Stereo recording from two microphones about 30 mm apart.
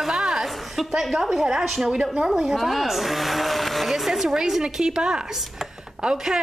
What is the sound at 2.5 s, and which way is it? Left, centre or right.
Speech, centre.